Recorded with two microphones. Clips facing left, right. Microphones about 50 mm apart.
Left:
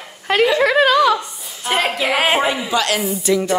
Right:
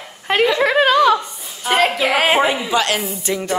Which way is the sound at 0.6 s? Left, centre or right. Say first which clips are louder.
Right 1 dB; right.